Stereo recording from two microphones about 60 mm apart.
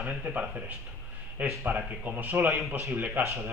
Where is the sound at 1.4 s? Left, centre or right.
Right.